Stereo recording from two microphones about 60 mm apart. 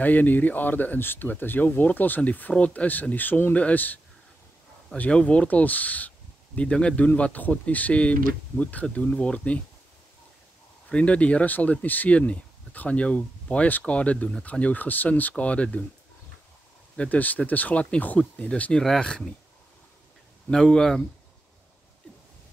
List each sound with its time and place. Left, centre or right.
0.0 s speech: left
10.9 s speech: left
16.9 s speech: left
20.4 s speech: centre